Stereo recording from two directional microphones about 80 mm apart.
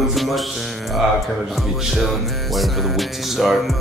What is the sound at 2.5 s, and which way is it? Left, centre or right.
Speech, centre.